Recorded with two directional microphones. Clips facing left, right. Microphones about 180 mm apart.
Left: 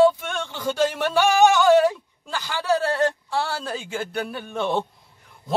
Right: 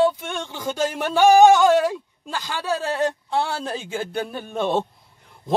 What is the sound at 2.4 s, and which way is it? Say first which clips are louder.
A man's voice: left 3 dB; 15° right (ahead or behind).